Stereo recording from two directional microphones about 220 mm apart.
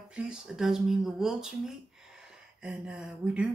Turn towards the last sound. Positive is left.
turn(degrees=-5)  # may be behind; listen again after turning